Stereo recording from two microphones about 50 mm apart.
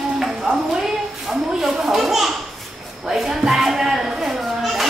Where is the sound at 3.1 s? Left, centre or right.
Centre.